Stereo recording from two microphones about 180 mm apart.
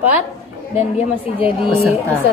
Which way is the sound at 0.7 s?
35° left (ahead or behind).